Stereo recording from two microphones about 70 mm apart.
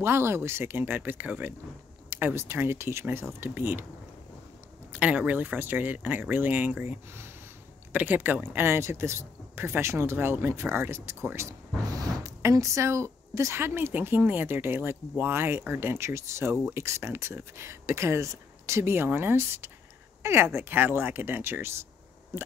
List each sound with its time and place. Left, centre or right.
0.0 s speech: right
2.0 s speech: right
4.9 s speech: right
11.9 s a sound: right
13.6 s speech: right